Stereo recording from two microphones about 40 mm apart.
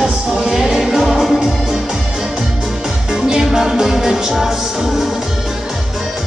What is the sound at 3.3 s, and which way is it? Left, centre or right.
Music, centre.